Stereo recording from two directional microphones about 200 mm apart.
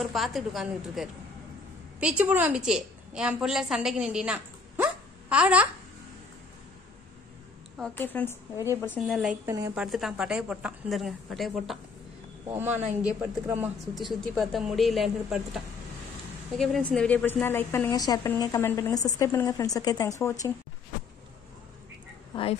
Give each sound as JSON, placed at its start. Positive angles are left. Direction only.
{"t": 0.0, "sound": "a woman's voice", "side_deg": 0}
{"t": 7.9, "sound": "a woman's voice", "side_deg": 10}
{"t": 8.9, "sound": "a woman's voice", "side_deg": 0}
{"t": 22.3, "sound": "speech", "side_deg": 25}